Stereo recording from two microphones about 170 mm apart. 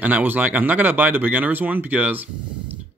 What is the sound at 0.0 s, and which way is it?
Speech, 10° right (ahead or behind).